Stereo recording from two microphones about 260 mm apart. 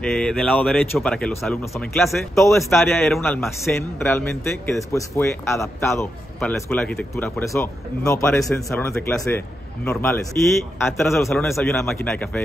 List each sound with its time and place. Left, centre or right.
0.0 s a man's voice: centre